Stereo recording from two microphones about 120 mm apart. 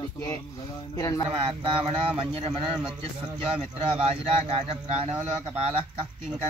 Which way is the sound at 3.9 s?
55° right (ahead or behind).